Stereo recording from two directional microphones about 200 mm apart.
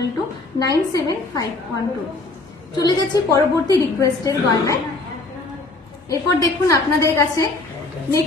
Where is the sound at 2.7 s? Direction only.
20° left (ahead or behind).